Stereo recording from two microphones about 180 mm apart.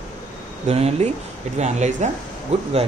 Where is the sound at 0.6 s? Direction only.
35° right (ahead or behind).